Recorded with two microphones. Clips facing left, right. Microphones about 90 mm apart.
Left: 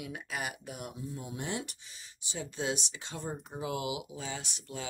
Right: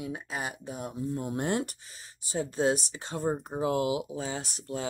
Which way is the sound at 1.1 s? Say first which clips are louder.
Right 8 dB; 50° right (ahead or behind).